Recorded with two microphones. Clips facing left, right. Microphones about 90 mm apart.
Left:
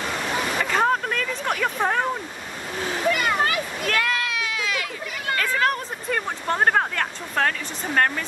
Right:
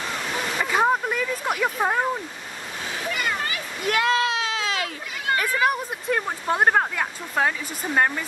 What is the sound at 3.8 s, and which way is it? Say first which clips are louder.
Children playing: right 5 dB; 20° right (ahead or behind).